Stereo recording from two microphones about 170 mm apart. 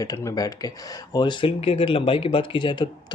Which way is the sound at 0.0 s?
20° left (ahead or behind).